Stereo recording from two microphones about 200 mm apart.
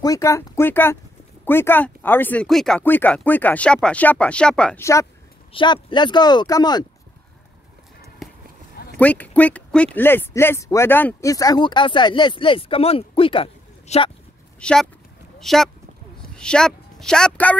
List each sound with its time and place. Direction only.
0.0 s speech: 15° left (ahead or behind)
5.5 s speech: 25° left (ahead or behind)
8.9 s speech: 5° left (ahead or behind); by 14.1 s 30° left (ahead or behind)
14.6 s speech: 5° left (ahead or behind)